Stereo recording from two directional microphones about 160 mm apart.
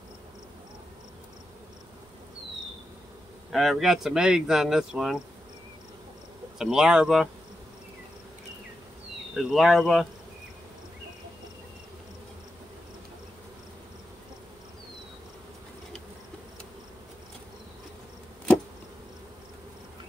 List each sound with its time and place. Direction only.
3.5 s speech: centre (ahead or behind)
6.6 s speech: 5° right (ahead or behind)
9.3 s speech: centre (ahead or behind)